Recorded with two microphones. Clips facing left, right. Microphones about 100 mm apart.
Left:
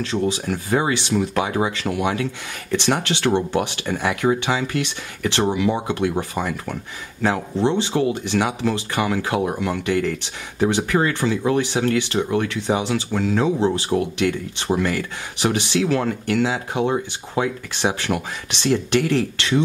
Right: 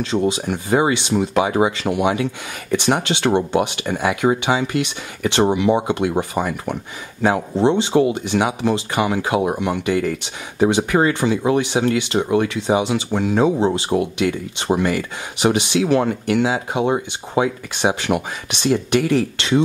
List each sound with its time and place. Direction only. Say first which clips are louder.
0.1 s speech: right 3 dB; 20° right (ahead or behind)